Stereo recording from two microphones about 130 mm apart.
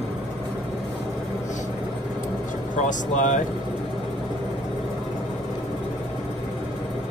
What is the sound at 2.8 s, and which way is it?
Speech, 70° left (ahead or behind).